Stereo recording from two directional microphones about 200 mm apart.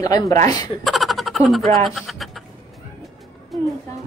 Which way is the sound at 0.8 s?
Centre (ahead or behind).